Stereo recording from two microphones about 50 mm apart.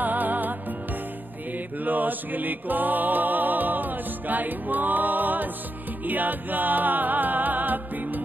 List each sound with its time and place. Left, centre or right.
0.0 s music: right
1.9 s music: right